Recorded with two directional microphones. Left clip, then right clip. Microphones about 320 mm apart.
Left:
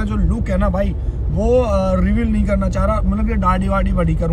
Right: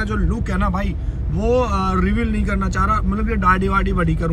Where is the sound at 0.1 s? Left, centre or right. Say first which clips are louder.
Left 2 dB; centre.